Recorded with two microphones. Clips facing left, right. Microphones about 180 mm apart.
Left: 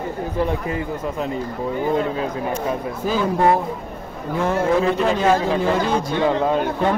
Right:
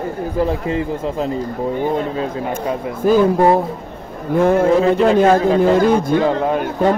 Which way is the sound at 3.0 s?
50° right (ahead or behind).